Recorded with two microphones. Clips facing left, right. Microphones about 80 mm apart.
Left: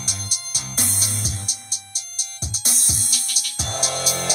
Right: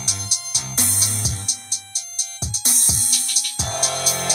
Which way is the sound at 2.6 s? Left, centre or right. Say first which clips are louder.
Right 1 dB; right.